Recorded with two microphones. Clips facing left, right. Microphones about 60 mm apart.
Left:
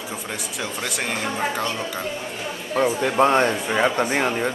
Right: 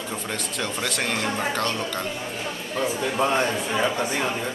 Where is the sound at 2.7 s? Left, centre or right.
Left.